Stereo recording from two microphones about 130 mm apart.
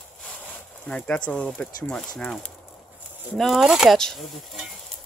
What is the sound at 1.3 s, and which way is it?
Speech, 10° left (ahead or behind).